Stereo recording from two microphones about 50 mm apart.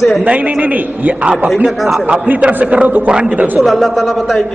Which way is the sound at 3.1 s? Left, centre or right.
Centre.